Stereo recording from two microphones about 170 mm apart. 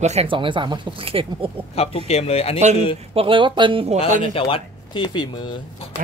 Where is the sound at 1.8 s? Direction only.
35° left (ahead or behind).